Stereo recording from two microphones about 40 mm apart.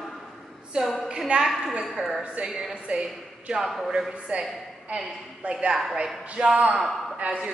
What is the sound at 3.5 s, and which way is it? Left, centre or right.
Speech, centre.